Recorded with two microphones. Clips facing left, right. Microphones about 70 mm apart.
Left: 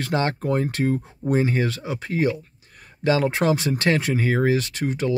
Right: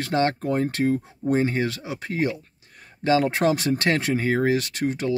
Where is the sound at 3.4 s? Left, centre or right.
Left.